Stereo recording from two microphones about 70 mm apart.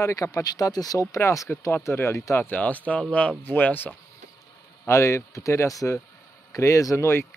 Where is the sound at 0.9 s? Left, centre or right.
Left.